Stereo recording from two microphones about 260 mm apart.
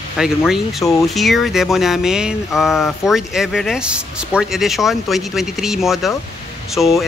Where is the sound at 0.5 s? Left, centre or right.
Centre.